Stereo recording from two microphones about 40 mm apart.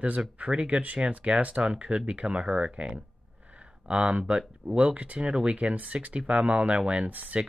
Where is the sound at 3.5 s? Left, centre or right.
Right.